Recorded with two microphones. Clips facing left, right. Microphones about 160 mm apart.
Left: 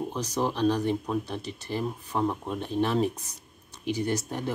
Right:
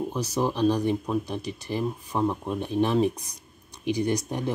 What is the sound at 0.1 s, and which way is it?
Speech, 10° right (ahead or behind).